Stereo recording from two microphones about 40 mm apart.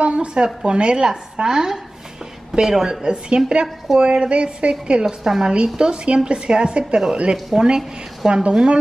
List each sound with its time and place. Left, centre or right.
0.0 s a sound: right
0.7 s a woman's voice: right
3.6 s a woman's voice: centre
4.0 s a woman's voice: right
5.0 s a woman's voice: centre
5.5 s a woman's voice: right